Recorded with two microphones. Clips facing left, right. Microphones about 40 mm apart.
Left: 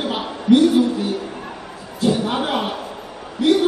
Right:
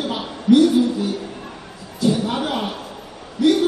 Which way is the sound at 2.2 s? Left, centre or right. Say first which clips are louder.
Left 2 dB; left.